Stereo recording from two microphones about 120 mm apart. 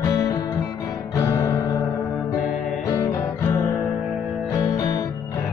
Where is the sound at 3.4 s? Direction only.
20° left (ahead or behind).